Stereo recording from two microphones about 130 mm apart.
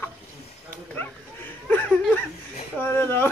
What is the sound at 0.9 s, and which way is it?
Dog, 15° left (ahead or behind).